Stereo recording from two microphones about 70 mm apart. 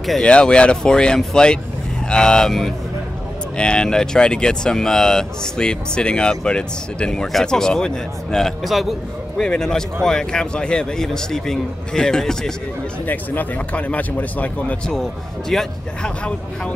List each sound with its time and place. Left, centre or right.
0.2 s speech: centre
9.4 s speech: centre
13.0 s speech: left
15.5 s speech: centre
16.0 s speech: centre